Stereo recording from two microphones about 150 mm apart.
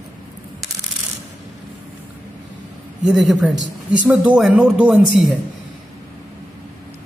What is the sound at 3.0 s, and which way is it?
A woman's voice, 5° right (ahead or behind).